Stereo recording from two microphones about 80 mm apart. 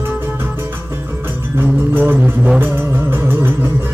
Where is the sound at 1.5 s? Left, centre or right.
Right.